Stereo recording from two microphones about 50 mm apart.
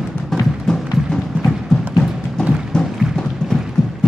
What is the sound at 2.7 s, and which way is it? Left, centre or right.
Music, centre.